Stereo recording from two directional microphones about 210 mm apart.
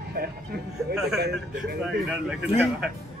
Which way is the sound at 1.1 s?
50° right (ahead or behind).